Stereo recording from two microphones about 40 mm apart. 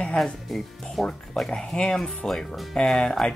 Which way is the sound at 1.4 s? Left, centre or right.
Centre.